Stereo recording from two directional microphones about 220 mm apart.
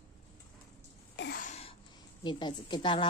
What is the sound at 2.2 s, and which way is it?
Speech, 20° left (ahead or behind).